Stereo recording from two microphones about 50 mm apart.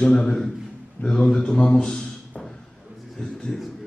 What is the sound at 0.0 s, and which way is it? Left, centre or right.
A man's voice, centre.